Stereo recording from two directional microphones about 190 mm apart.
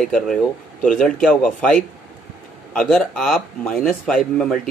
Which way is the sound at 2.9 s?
5° left (ahead or behind).